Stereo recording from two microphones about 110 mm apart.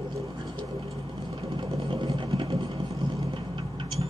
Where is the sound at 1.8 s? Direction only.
50° right (ahead or behind).